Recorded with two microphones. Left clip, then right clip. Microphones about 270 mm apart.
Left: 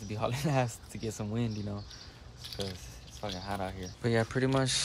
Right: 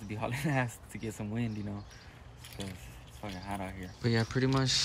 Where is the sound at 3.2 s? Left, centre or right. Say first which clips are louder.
Left 3 dB; centre.